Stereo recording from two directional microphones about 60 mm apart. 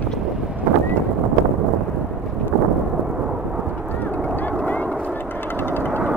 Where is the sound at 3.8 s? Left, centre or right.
Left.